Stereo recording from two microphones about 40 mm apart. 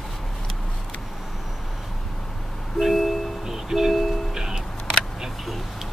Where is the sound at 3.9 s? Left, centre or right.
Centre.